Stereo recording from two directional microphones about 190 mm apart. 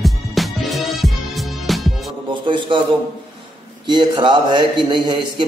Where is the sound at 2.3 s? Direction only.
25° right (ahead or behind).